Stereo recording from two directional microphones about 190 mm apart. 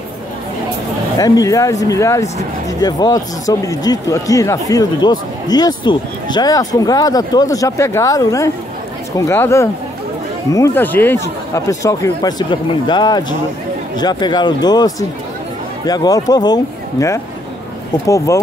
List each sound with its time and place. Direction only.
1.1 s speech: 20° left (ahead or behind)